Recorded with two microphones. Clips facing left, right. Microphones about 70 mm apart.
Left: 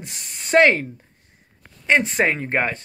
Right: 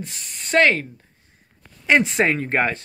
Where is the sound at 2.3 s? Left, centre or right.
Centre.